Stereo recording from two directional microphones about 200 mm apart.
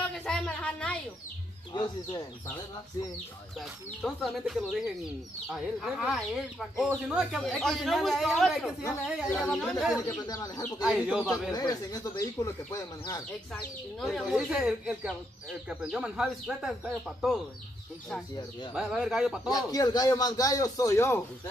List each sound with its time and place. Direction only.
0.1 s a sound: 5° left (ahead or behind)
1.7 s speech: 20° left (ahead or behind)
3.5 s speech: centre (ahead or behind)
10.0 s speech: 20° left (ahead or behind)
10.8 s speech: 5° right (ahead or behind)
11.5 s speech: 20° left (ahead or behind)
13.5 s speech: 5° left (ahead or behind)
18.8 s speech: 5° right (ahead or behind)
19.5 s speech: 20° left (ahead or behind)